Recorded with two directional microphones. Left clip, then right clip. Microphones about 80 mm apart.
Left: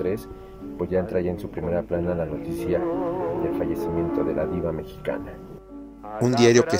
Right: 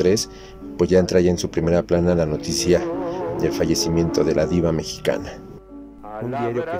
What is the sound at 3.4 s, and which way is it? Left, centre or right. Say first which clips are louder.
Speech: right 5 dB; right.